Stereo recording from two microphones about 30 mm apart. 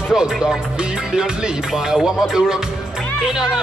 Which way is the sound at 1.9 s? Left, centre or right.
Centre.